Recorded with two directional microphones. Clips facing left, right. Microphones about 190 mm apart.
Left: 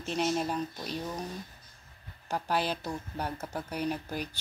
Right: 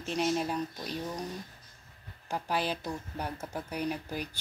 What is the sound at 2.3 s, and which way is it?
Speech, 40° left (ahead or behind).